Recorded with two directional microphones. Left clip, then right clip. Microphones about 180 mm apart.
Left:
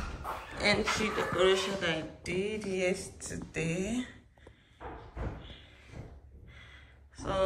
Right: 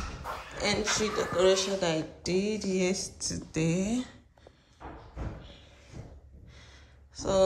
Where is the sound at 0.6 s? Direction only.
10° right (ahead or behind); by 2.9 s 30° right (ahead or behind).